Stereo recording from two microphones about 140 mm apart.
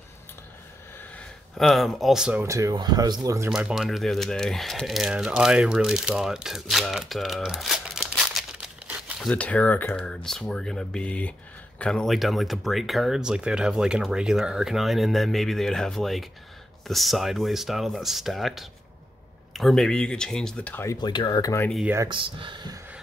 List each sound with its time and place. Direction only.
1.6 s speech: centre (ahead or behind)
2.4 s speech: 20° right (ahead or behind)
3.4 s speech: 5° right (ahead or behind)
8.8 s crumpling: 10° right (ahead or behind)
9.3 s speech: 10° left (ahead or behind)
20.8 s speech: 20° left (ahead or behind)
21.8 s speech: 20° right (ahead or behind)
22.1 s speech: 35° right (ahead or behind)